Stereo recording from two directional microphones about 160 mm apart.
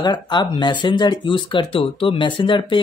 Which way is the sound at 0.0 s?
25° left (ahead or behind).